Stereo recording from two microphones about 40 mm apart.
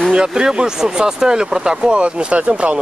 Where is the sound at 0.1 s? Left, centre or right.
Centre.